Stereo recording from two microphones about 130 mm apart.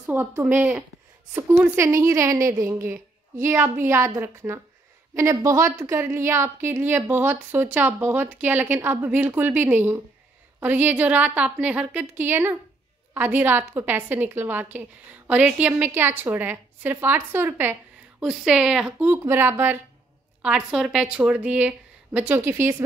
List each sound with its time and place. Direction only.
0.0 s a woman's voice: 15° right (ahead or behind)
1.8 s a woman's voice: 20° right (ahead or behind)
18.2 s a woman's voice: 5° right (ahead or behind)
20.4 s a woman's voice: 5° right (ahead or behind)